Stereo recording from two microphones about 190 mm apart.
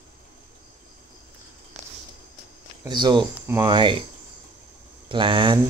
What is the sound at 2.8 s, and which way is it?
Speech, 25° right (ahead or behind).